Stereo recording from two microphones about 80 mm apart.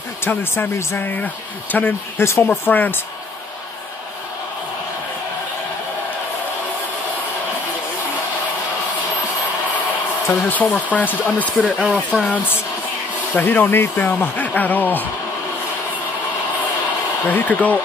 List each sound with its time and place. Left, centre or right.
0.2 s speech: left
10.5 s speech: centre
11.9 s speech: centre
13.3 s speech: left
17.3 s speech: left